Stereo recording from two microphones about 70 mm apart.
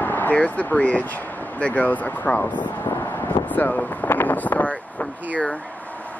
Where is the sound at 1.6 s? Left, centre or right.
Left.